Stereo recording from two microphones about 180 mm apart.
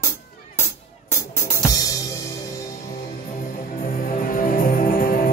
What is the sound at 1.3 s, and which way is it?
Music, 15° left (ahead or behind).